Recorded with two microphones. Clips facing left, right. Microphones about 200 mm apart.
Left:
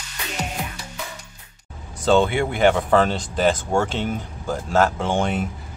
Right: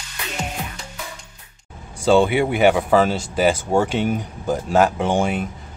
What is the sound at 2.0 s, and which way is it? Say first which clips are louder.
Speech: right 2 dB; 10° right (ahead or behind).